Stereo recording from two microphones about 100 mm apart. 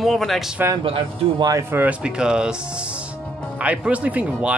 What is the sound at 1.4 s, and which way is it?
Speech, 30° right (ahead or behind).